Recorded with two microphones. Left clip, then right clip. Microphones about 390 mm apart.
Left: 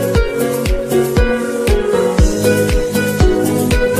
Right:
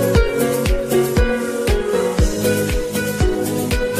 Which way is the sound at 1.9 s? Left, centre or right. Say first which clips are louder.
Left 4 dB; left.